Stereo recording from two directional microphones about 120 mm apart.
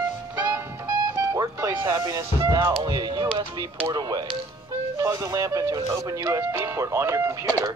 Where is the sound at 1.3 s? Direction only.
25° right (ahead or behind).